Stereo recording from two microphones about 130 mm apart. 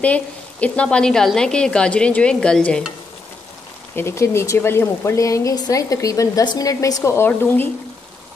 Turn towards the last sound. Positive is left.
turn(degrees=15)  # may be behind; listen again after turning